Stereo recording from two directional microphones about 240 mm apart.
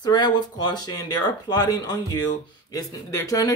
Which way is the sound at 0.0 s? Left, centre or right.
Centre.